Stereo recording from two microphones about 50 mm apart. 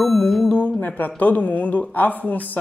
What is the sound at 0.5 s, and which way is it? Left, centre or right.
Speech, left.